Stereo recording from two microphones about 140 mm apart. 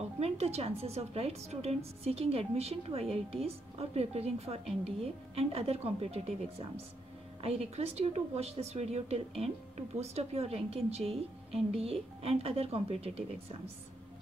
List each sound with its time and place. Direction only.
0.2 s a woman's voice: 45° right (ahead or behind)
7.4 s a woman's voice: 45° right (ahead or behind)